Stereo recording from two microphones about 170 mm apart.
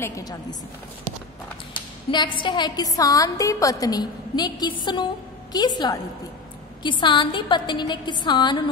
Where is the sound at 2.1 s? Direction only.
25° left (ahead or behind).